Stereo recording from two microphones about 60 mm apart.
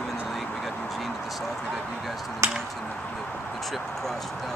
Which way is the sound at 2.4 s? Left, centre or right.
Right.